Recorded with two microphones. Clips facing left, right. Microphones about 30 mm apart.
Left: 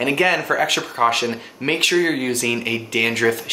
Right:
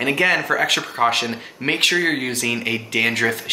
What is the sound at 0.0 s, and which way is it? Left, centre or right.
Speech, centre.